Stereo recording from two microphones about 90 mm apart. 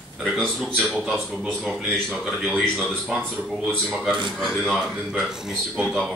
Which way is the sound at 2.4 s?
5° left (ahead or behind).